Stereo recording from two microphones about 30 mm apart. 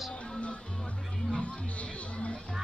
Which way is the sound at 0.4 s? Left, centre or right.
Left.